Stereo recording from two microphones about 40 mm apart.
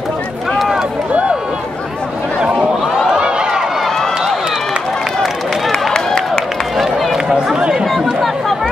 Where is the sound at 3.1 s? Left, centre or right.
Right.